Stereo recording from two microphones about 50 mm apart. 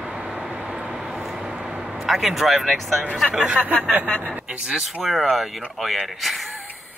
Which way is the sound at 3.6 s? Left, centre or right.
Left.